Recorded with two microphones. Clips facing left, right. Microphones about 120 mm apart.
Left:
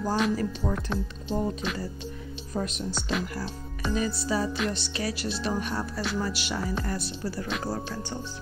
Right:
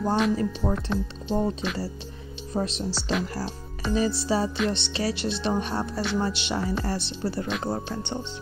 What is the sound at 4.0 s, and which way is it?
Speech, 25° right (ahead or behind).